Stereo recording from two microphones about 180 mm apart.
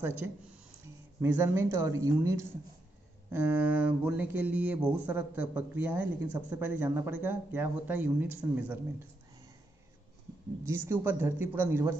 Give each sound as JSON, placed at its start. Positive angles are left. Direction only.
{"t": 0.0, "sound": "speech", "side_deg": -10}
{"t": 10.6, "sound": "speech", "side_deg": -15}